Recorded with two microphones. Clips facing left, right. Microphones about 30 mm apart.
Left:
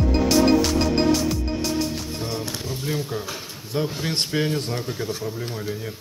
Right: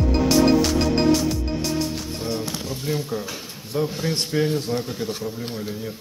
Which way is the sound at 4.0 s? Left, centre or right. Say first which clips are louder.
Right 1 dB; left.